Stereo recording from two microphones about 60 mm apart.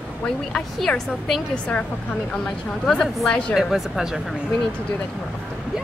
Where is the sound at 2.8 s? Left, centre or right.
Centre.